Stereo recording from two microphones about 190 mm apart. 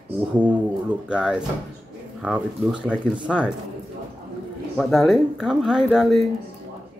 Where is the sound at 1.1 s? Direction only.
5° right (ahead or behind).